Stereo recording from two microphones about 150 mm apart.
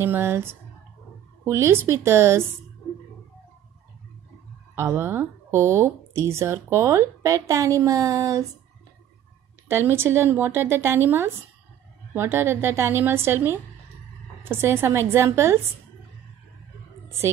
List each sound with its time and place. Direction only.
0.0 s a woman's voice: 15° right (ahead or behind)
4.7 s speech: 15° right (ahead or behind)
9.7 s a woman's voice: 15° right (ahead or behind)